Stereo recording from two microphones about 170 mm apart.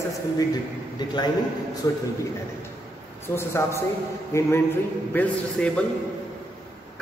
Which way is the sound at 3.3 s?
15° left (ahead or behind).